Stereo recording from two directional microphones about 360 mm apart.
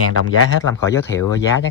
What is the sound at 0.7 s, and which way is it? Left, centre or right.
Speech, centre.